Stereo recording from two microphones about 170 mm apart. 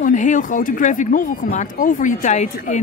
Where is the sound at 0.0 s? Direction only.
45° left (ahead or behind).